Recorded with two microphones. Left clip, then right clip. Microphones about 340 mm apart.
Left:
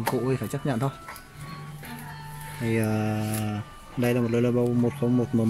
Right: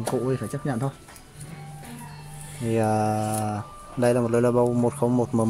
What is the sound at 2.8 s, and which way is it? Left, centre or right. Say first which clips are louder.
Speech: right 7 dB; right.